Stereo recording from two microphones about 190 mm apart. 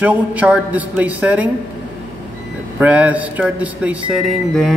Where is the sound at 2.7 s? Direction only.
5° right (ahead or behind).